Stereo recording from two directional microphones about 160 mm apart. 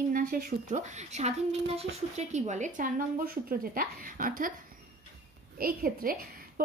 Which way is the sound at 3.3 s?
65° right (ahead or behind).